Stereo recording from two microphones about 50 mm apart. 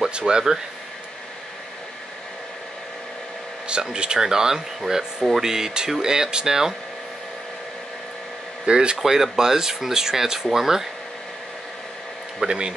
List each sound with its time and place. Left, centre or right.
0.2 s speech: centre
3.6 s speech: centre
8.6 s speech: centre
12.4 s speech: centre